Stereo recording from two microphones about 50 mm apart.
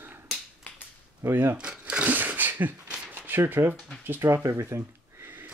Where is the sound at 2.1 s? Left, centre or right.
Right.